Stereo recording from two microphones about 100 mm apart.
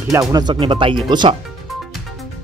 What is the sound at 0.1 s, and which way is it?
Speech, 35° right (ahead or behind).